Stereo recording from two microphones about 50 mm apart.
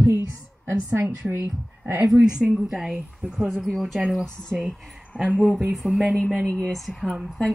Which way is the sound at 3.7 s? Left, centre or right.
Centre.